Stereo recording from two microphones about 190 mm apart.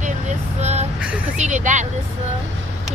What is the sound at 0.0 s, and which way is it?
Vehicle, 40° right (ahead or behind).